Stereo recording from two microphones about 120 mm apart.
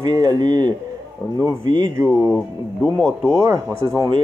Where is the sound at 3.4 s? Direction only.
25° right (ahead or behind).